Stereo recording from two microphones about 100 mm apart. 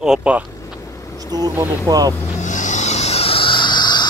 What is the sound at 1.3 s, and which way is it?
Speech, 40° right (ahead or behind).